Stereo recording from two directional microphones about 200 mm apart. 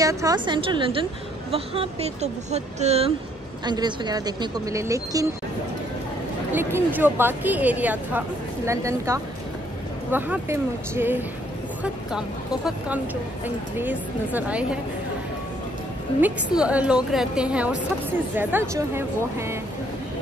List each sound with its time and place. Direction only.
0.0 s speech: 15° right (ahead or behind); by 3.1 s 30° right (ahead or behind)
3.6 s speech: 20° right (ahead or behind)
6.5 s a woman's voice: 10° right (ahead or behind)
16.2 s a woman's voice: 5° right (ahead or behind)